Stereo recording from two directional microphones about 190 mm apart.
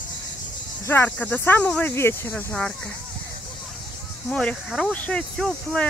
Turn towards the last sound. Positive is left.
turn(degrees=5)  # may be behind; listen again after turning